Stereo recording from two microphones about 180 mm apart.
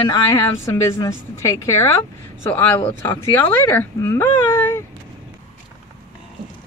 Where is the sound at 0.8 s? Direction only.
15° left (ahead or behind).